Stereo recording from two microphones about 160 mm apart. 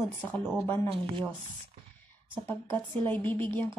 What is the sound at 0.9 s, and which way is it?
Speech, 30° right (ahead or behind).